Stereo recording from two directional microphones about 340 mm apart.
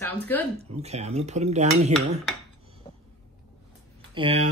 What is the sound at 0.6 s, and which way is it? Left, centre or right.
Dishes, centre.